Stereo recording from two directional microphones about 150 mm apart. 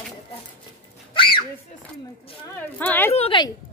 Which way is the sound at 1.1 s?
35° left (ahead or behind).